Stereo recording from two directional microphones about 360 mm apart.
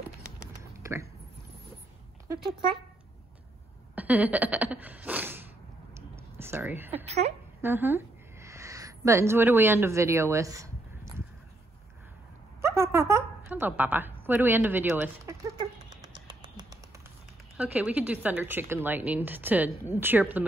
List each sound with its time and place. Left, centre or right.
0.7 s a sound: centre
3.9 s a sound: centre
7.1 s a woman's voice: centre
7.6 s speech: centre
12.6 s a woman's voice: centre
16.1 s finger snapping: centre
17.6 s a woman's voice: centre